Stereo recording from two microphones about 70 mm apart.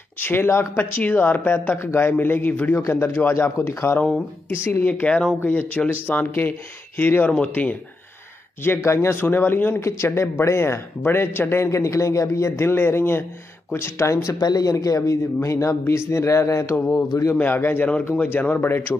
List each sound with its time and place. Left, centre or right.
0.2 s speech: left
5.0 s speech: centre
5.4 s speech: left
8.6 s speech: left
9.8 s speech: left
14.4 s speech: left
16.9 s speech: left
17.4 s speech: left